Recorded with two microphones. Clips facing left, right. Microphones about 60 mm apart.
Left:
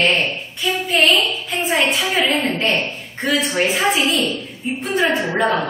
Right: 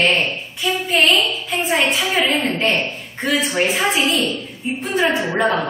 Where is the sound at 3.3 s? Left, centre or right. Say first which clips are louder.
Even; centre.